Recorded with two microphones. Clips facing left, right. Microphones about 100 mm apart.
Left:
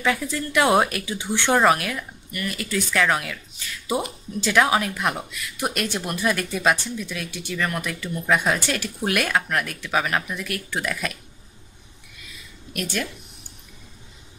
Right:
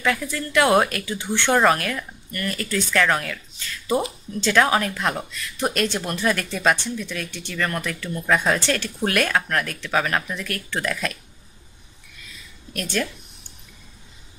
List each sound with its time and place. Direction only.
0.0 s speech: 20° left (ahead or behind)
12.7 s speech: 10° left (ahead or behind)